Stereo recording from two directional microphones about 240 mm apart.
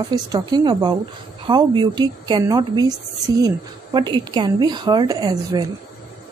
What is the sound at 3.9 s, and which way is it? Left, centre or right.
Speech, centre.